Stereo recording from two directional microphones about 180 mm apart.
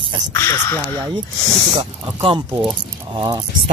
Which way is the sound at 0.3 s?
15° left (ahead or behind).